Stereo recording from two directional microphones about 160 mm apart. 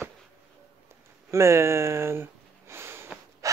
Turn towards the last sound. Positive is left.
turn(degrees=-15)  # may be behind; listen again after turning